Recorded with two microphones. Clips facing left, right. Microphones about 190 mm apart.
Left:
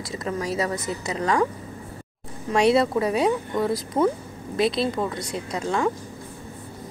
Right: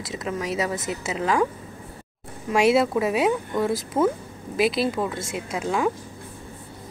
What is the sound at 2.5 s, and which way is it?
A woman's voice, 5° right (ahead or behind).